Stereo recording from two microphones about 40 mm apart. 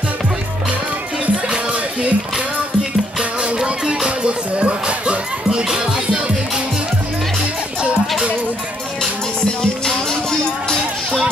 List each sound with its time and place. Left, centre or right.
1.3 s music: right
3.5 s music: right
9.6 s music: centre